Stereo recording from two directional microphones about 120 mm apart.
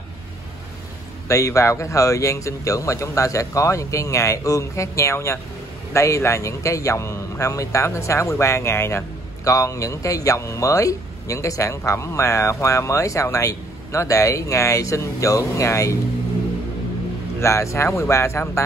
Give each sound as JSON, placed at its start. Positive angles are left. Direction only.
{"t": 1.3, "sound": "a man's voice", "side_deg": 25}
{"t": 17.4, "sound": "a man's voice", "side_deg": 25}